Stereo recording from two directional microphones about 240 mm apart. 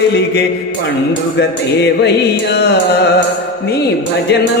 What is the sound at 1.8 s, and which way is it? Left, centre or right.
Music, left.